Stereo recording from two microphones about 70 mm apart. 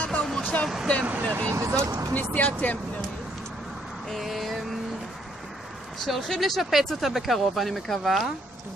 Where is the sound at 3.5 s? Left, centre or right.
Centre.